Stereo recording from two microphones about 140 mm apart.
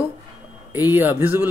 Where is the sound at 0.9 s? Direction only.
15° right (ahead or behind).